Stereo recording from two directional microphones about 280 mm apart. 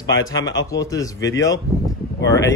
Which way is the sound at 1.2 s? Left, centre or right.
Left.